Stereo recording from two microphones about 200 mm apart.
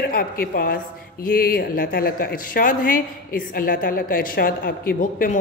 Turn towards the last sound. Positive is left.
turn(degrees=45)  # may be behind; listen again after turning